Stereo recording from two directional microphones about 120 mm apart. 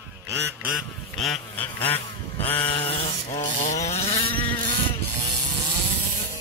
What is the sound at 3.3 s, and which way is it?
Vehicle, 25° left (ahead or behind).